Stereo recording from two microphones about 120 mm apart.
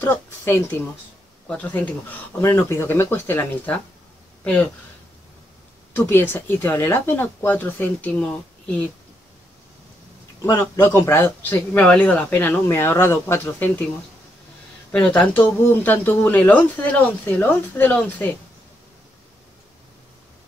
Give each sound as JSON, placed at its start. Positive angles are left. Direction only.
{"t": 0.0, "sound": "speech", "side_deg": 15}
{"t": 5.9, "sound": "speech", "side_deg": 20}
{"t": 10.6, "sound": "speech", "side_deg": 20}
{"t": 14.9, "sound": "speech", "side_deg": 10}